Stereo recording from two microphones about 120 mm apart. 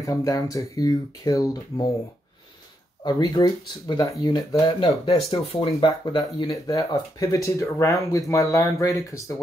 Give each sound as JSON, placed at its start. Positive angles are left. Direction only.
{"t": 0.0, "sound": "speech", "side_deg": 30}
{"t": 3.0, "sound": "speech", "side_deg": 35}
{"t": 5.3, "sound": "speech", "side_deg": 55}